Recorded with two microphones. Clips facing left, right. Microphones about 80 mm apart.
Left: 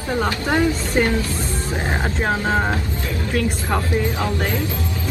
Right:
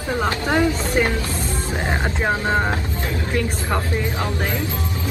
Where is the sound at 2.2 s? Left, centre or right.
Centre.